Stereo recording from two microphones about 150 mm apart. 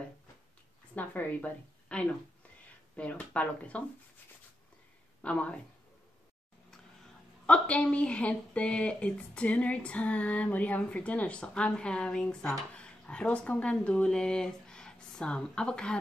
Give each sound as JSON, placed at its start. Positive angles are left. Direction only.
{"t": 0.9, "sound": "a woman's voice", "side_deg": 10}
{"t": 5.2, "sound": "speech", "side_deg": 10}
{"t": 7.4, "sound": "speech", "side_deg": 10}